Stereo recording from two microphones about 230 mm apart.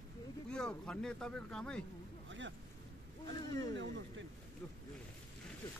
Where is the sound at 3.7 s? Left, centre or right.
Right.